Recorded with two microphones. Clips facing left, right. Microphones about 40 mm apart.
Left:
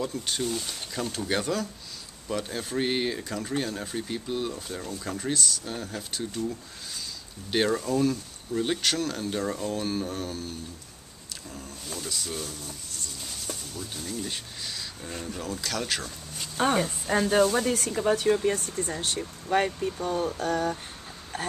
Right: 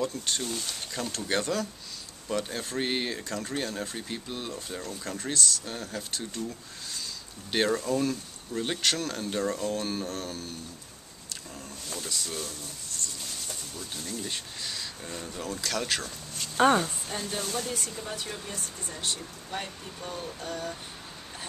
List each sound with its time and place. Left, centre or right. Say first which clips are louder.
0.0 s speech: left 1 dB; centre
7.5 s speech: left 1 dB; centre
17.2 s speech: left 14 dB; left
17.7 s speech: left 10 dB; left
20.3 s a sound: left 8 dB; left